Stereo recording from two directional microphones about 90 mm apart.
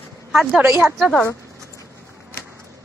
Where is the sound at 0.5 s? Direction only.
25° right (ahead or behind).